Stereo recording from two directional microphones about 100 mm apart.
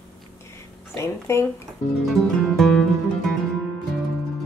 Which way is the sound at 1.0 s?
30° left (ahead or behind).